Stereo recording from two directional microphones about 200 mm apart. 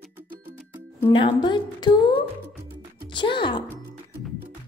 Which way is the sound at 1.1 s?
25° left (ahead or behind).